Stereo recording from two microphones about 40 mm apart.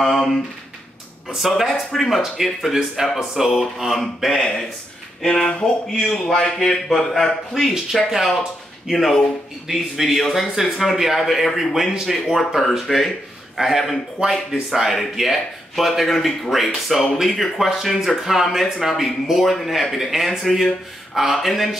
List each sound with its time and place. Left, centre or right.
0.0 s speech: centre
1.4 s speech: centre
5.2 s speech: centre
7.9 s speech: centre